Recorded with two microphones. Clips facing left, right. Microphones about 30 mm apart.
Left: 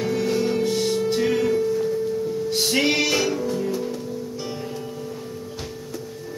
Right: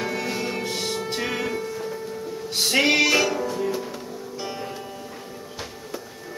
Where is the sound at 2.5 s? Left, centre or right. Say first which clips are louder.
Right 2 dB; centre; by 4.1 s right.